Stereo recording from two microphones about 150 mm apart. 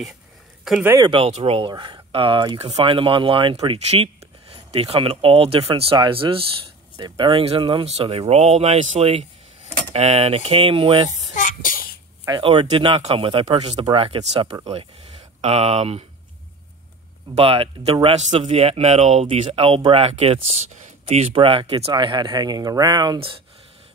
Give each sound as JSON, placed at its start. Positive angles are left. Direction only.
{"t": 0.7, "sound": "speech", "side_deg": 0}
{"t": 1.0, "sound": "speech", "side_deg": -40}
{"t": 11.3, "sound": "music", "side_deg": 60}
{"t": 12.3, "sound": "speech", "side_deg": -35}
{"t": 17.4, "sound": "speech", "side_deg": -40}